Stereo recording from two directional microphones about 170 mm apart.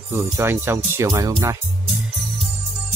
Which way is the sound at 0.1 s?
15° right (ahead or behind).